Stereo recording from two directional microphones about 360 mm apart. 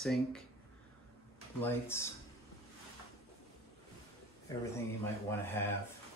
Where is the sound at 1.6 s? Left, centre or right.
Centre.